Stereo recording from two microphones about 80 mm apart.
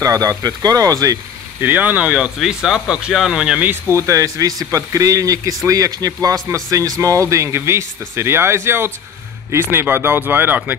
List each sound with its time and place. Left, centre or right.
0.0 s speech: right
1.6 s speech: right
2.3 s speech: centre; by 3.9 s right
3.9 s speech: right